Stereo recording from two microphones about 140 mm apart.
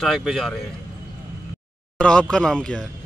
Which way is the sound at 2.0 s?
5° left (ahead or behind).